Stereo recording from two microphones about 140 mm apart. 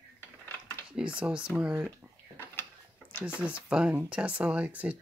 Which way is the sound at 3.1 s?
15° left (ahead or behind).